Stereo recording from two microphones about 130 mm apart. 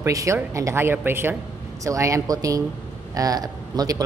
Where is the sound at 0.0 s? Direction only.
25° right (ahead or behind).